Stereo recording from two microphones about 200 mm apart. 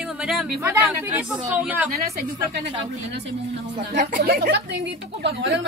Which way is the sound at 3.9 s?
50° right (ahead or behind).